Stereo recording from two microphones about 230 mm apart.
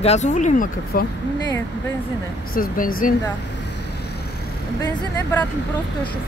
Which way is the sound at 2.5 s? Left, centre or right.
Left.